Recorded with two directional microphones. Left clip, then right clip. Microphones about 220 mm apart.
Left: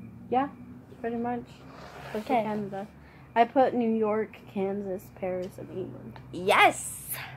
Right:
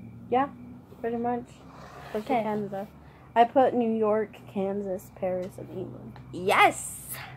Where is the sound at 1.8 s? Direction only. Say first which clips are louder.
Left 1 dB; 20° left (ahead or behind).